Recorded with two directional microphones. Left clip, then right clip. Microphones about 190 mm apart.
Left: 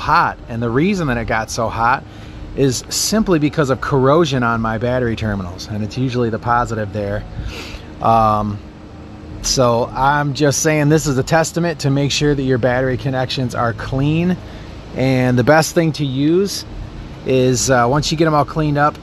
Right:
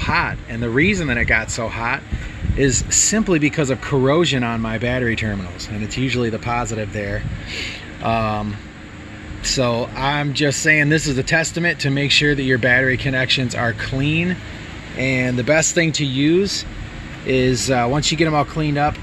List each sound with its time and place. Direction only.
0.0 s speech: 10° left (ahead or behind)
3.1 s speech: 5° left (ahead or behind)
15.0 s speech: 35° left (ahead or behind)
15.7 s speech: 10° left (ahead or behind)
17.3 s speech: 10° left (ahead or behind)